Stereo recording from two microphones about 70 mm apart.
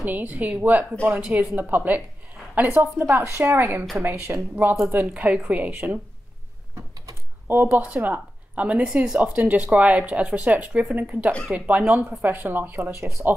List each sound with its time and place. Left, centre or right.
0.0 s speech: right
5.1 s speech: centre
7.4 s speech: right